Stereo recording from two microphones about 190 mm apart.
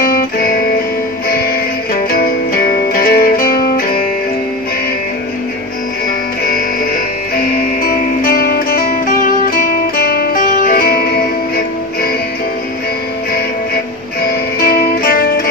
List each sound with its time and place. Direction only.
0.0 s music: 50° left (ahead or behind)
2.1 s music: 50° left (ahead or behind)
7.3 s music: 50° left (ahead or behind)
14.2 s music: 50° left (ahead or behind)